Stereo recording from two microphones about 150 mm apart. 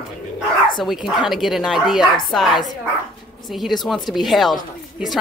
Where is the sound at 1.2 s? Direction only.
Centre (ahead or behind).